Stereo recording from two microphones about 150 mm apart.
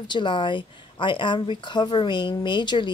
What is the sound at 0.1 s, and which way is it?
A woman's voice, 30° left (ahead or behind).